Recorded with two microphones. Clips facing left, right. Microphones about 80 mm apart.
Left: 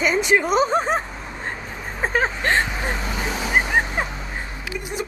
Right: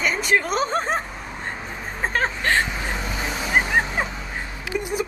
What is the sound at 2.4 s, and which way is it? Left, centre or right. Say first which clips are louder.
Speech: right 1 dB; left.